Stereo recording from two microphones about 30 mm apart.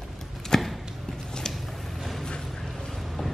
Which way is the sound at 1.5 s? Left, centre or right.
Centre.